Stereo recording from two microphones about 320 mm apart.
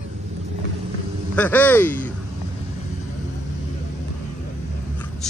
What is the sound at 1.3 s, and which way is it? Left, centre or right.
Speech, centre.